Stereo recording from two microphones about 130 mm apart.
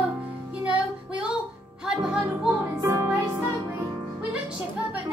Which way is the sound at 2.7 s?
20° right (ahead or behind).